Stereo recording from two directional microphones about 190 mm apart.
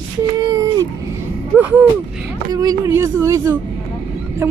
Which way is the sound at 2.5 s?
20° right (ahead or behind).